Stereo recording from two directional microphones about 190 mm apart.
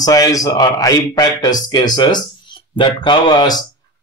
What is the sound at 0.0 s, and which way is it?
A man's voice, 20° left (ahead or behind).